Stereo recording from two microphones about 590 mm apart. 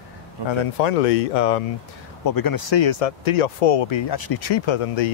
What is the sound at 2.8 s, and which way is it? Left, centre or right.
Speech, left.